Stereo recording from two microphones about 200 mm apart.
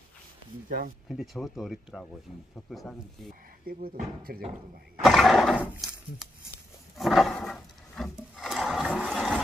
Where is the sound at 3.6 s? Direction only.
50° right (ahead or behind).